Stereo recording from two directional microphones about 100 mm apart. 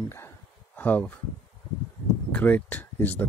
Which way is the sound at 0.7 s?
15° left (ahead or behind).